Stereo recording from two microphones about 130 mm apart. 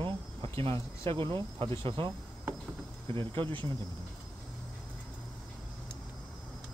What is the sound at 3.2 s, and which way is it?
Speech, 40° right (ahead or behind).